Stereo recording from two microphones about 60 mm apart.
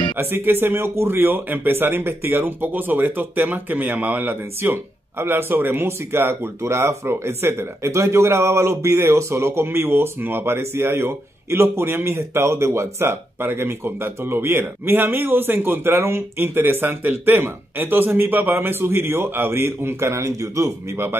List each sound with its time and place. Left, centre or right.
0.2 s speech: right